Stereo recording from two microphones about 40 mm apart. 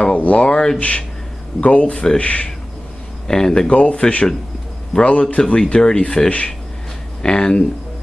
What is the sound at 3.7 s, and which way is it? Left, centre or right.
Speech, left.